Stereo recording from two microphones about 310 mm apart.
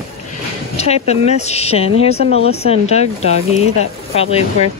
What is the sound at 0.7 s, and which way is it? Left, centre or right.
Speech, centre.